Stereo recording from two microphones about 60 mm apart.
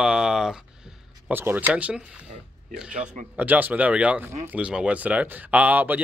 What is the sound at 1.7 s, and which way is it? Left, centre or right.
Speech, centre.